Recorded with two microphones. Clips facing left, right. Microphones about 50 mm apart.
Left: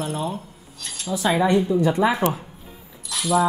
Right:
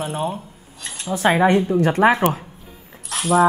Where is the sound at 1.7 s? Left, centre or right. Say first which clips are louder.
Right 4 dB; right.